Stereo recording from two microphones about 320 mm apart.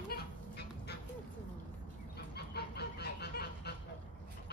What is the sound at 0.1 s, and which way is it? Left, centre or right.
Goose, left.